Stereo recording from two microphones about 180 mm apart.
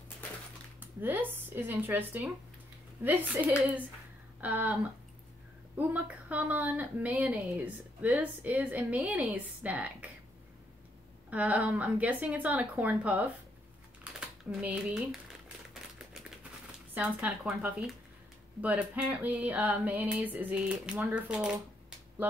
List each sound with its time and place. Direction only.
0.7 s a woman's voice: 10° right (ahead or behind)
11.2 s a woman's voice: 10° right (ahead or behind)
14.2 s crumpling: 5° right (ahead or behind)
16.9 s a woman's voice: 10° right (ahead or behind)